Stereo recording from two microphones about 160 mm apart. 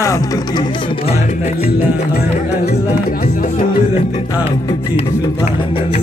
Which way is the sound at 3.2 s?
60° left (ahead or behind).